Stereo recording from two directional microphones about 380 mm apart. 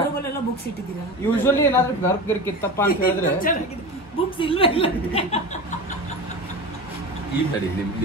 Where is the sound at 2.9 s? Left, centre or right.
Left.